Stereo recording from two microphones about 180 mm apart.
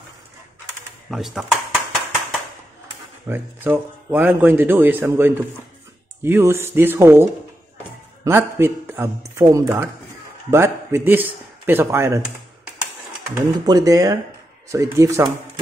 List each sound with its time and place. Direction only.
1.1 s dishes: centre (ahead or behind)
3.3 s speech: 10° right (ahead or behind)
13.3 s speech: 20° right (ahead or behind)